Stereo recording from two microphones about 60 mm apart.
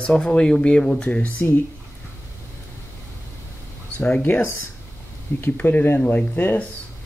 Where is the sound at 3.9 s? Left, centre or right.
Left.